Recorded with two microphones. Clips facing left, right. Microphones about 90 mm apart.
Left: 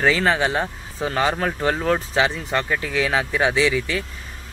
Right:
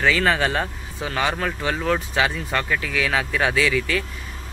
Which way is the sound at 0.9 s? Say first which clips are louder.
Left 3 dB; 30° left (ahead or behind).